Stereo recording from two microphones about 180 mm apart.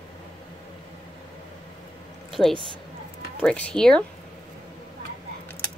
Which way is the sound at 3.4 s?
5° left (ahead or behind).